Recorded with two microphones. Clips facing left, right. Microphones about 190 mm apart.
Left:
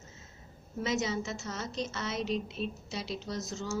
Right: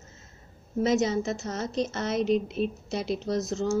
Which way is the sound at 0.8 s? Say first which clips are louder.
Right 8 dB; 40° right (ahead or behind).